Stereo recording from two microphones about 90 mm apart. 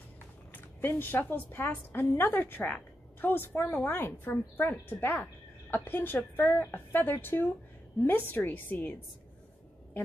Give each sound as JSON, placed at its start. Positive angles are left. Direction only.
{"t": 0.5, "sound": "a woman's voice", "side_deg": 20}